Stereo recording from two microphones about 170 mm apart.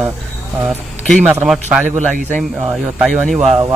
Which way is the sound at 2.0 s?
50° right (ahead or behind).